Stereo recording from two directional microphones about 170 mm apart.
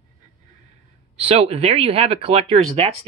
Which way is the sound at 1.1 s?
35° right (ahead or behind).